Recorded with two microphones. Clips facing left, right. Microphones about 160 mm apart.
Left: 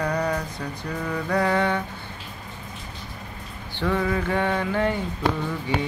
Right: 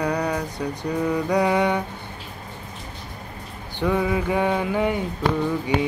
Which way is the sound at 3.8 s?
15° right (ahead or behind).